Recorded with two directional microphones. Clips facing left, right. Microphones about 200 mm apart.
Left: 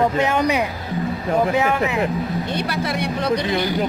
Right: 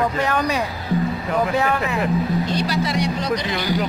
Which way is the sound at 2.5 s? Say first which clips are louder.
Right 1 dB; 60° left (ahead or behind).